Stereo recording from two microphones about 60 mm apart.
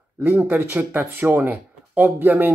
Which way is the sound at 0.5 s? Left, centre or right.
Right.